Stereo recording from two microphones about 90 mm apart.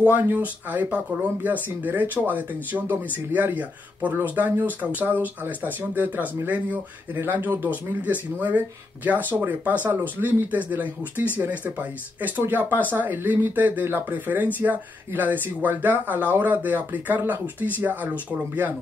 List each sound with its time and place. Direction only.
0.1 s speech: 20° right (ahead or behind)